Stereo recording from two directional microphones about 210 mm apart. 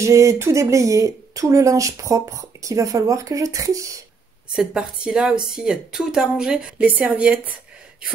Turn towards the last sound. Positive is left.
turn(degrees=-5)  # may be behind; listen again after turning